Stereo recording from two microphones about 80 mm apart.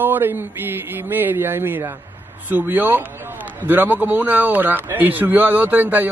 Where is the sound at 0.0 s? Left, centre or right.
Right.